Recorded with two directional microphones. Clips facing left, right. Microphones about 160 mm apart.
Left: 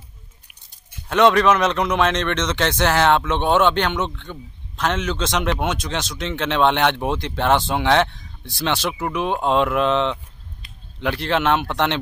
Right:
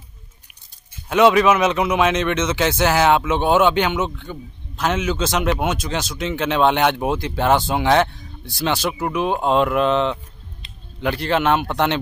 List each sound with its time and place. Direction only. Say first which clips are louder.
1.0 s speech: right 1 dB; 5° right (ahead or behind)
10.6 s a sound: right 2 dB; 25° right (ahead or behind)
11.0 s speech: right 1 dB; centre (ahead or behind)